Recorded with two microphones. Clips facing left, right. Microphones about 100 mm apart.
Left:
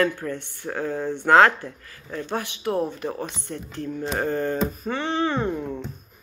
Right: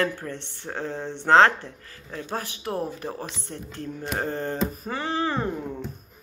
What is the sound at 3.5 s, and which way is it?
Speech, 30° right (ahead or behind).